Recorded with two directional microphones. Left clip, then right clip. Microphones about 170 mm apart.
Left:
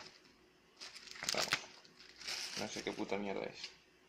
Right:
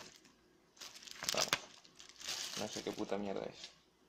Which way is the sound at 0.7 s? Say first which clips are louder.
Left 1 dB; 20° right (ahead or behind).